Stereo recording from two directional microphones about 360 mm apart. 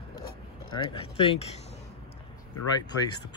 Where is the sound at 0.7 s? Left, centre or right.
Centre.